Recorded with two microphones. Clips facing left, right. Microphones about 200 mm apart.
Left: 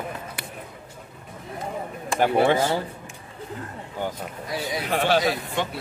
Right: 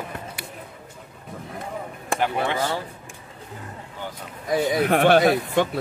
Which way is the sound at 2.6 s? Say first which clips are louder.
Left 2 dB; 25° left (ahead or behind).